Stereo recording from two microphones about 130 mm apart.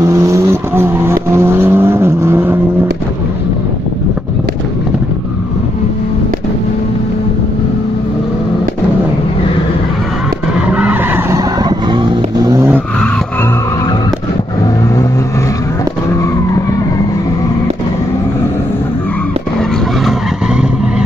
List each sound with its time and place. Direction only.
0.0 s vehicle: 25° right (ahead or behind)
10.7 s skidding: 10° right (ahead or behind)
11.9 s vehicle: 35° right (ahead or behind)